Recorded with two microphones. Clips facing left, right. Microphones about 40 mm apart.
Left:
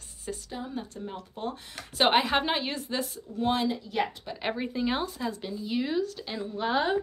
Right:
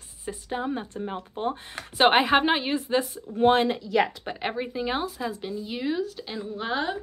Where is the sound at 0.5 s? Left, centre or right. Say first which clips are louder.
Right 11 dB; right; by 3.1 s centre.